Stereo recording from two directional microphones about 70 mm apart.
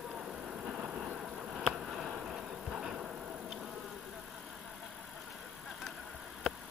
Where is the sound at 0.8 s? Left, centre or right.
Right.